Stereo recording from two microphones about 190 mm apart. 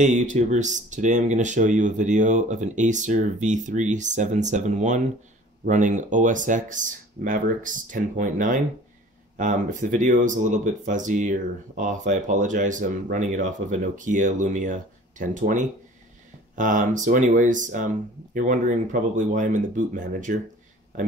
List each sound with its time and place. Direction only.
0.0 s speech: 40° right (ahead or behind)